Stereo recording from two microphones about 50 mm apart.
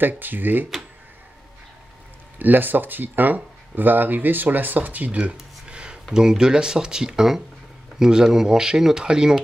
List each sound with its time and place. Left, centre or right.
0.2 s speech: right
2.3 s speech: right; by 9.4 s centre